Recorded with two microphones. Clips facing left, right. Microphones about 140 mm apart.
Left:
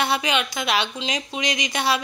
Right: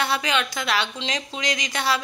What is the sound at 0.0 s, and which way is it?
A woman's voice, 15° left (ahead or behind).